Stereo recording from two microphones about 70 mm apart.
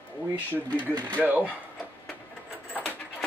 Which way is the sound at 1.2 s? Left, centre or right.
Right.